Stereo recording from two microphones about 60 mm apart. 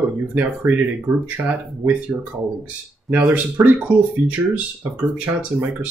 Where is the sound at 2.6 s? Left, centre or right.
Right.